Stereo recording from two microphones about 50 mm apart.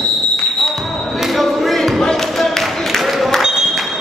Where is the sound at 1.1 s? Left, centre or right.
Centre.